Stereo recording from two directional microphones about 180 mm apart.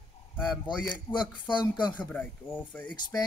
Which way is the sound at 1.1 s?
25° left (ahead or behind).